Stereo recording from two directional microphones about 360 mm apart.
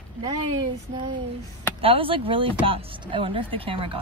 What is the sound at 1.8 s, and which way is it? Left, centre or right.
Speech, centre.